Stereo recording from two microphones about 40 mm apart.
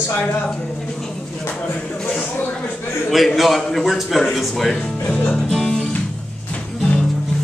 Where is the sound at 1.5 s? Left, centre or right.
Left.